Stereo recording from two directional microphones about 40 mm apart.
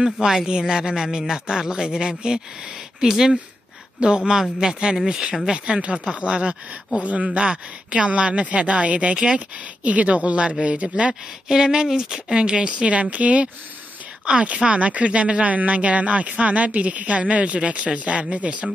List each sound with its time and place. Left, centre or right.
0.0 s speech: centre
5.5 s speech: right
9.1 s speech: right
9.8 s speech: right
11.4 s speech: centre; by 18.7 s right